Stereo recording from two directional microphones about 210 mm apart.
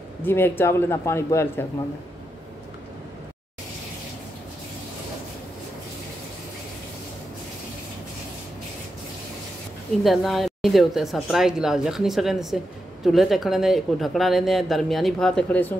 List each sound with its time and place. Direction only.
0.2 s a man's voice: 10° left (ahead or behind)
10.0 s speech: centre (ahead or behind)